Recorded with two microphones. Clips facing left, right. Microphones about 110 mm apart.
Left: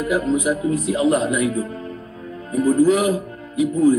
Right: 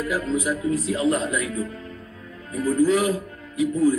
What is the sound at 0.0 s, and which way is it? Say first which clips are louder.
Speech: left 5 dB; 15° left (ahead or behind).